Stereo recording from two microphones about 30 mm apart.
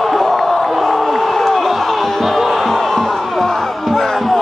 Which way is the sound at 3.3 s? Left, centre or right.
Centre.